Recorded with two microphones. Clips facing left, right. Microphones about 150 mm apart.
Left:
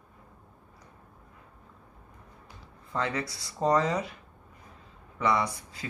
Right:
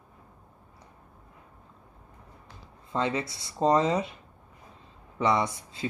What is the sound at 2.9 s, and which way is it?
Speech, 20° right (ahead or behind).